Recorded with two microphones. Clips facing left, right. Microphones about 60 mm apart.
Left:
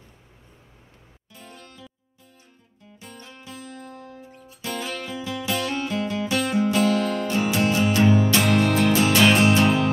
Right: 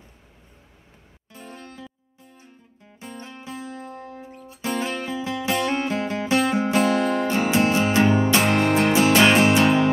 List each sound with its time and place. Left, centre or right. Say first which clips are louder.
1.3 s music: right 5 dB; right
3.0 s music: right 5 dB; right